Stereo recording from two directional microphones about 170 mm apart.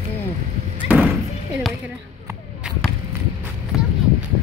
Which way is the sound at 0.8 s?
10° right (ahead or behind).